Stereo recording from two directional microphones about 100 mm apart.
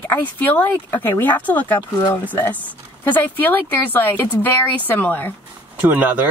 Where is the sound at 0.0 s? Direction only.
15° left (ahead or behind).